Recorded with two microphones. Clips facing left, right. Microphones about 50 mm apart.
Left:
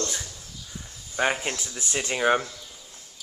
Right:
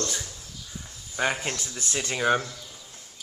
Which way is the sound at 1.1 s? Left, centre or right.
Centre.